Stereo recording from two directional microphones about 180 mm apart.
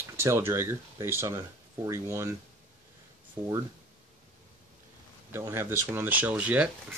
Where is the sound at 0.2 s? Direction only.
15° right (ahead or behind).